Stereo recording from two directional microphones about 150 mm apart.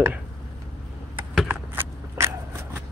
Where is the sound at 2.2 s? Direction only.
15° right (ahead or behind).